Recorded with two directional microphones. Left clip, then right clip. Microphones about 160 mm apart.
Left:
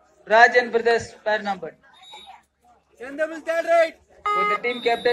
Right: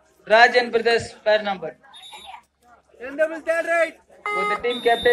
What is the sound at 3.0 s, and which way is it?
A man's voice, 45° left (ahead or behind).